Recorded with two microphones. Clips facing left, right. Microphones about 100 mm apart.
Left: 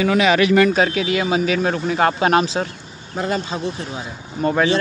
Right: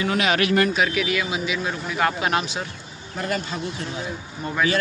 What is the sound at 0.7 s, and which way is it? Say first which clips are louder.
A man's voice: left 4 dB; 35° left (ahead or behind).